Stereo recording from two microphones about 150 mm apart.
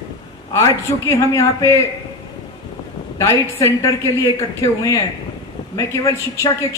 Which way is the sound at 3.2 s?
20° left (ahead or behind).